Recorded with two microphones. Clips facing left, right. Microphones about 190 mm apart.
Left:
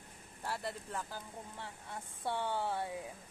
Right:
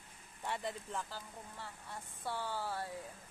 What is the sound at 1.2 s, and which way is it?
Speech, 20° left (ahead or behind).